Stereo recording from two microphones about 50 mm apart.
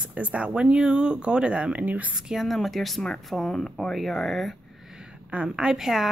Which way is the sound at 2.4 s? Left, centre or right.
Centre.